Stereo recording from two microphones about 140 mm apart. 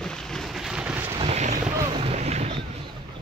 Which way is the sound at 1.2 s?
50° right (ahead or behind).